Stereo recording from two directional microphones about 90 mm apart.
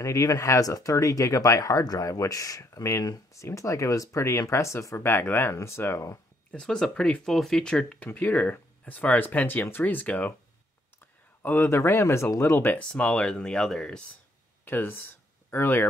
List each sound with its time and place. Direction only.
0.0 s speech: 35° left (ahead or behind)
6.5 s speech: 10° left (ahead or behind)
8.1 s speech: 20° left (ahead or behind)
11.4 s speech: 25° left (ahead or behind); by 14.0 s 5° left (ahead or behind)
14.6 s speech: 20° left (ahead or behind)